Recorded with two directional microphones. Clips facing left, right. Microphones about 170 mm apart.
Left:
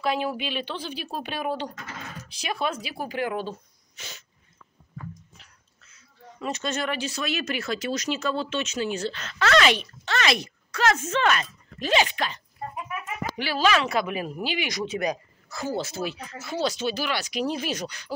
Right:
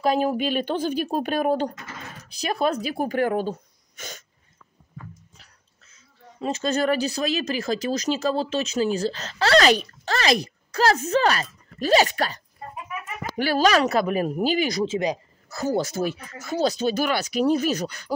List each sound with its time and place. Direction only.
0.0 s speech: 45° right (ahead or behind)
6.4 s speech: 35° right (ahead or behind)
13.4 s speech: 45° right (ahead or behind); by 15.1 s 25° right (ahead or behind)
15.5 s speech: 45° right (ahead or behind)